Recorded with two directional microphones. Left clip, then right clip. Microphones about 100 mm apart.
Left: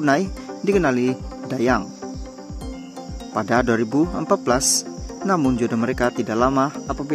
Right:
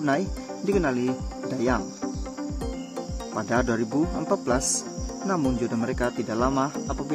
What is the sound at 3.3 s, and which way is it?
Speech, 55° left (ahead or behind).